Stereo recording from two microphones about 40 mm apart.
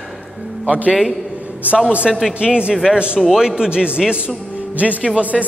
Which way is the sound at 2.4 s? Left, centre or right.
Right.